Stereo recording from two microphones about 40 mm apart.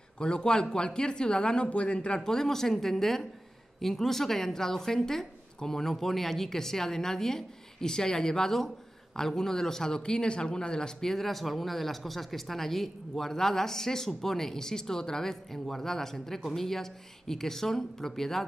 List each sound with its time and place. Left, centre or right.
0.2 s speech: left
2.2 s a woman's voice: centre